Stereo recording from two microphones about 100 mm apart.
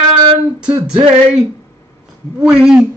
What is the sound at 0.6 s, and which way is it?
Speech, 10° right (ahead or behind).